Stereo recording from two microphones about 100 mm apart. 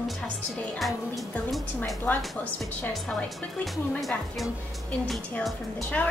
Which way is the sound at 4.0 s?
Centre (ahead or behind).